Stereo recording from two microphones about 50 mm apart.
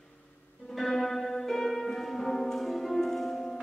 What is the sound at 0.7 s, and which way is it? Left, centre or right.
Music, centre.